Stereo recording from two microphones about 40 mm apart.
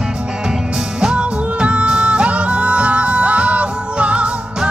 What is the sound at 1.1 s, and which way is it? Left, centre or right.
Music, right.